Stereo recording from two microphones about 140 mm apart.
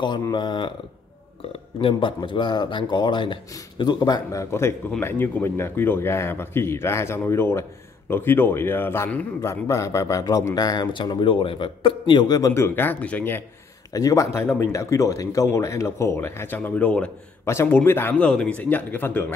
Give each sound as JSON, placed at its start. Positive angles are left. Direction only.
{"t": 0.0, "sound": "speech", "side_deg": 30}
{"t": 1.8, "sound": "a man's voice", "side_deg": 40}
{"t": 13.9, "sound": "a man's voice", "side_deg": 25}